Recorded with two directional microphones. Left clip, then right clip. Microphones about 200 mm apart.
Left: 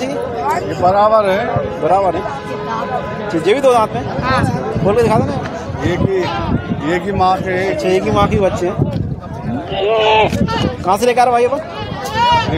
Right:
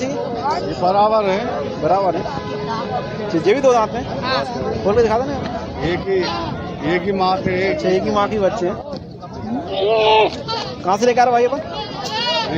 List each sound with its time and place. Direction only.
0.8 s speech: 45° left (ahead or behind)
1.9 s speech: 10° left (ahead or behind)
3.4 s speech: 5° left (ahead or behind)
4.2 s speech: 10° right (ahead or behind)
4.8 s speech: 5° left (ahead or behind)
5.9 s speech: 50° left (ahead or behind)
7.7 s speech: 5° left (ahead or behind)
9.8 s speech: 5° left (ahead or behind)